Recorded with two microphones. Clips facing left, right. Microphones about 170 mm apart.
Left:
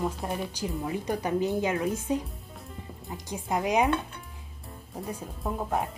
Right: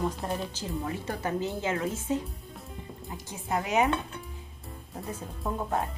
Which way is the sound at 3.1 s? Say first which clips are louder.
Left 1 dB; 15° left (ahead or behind).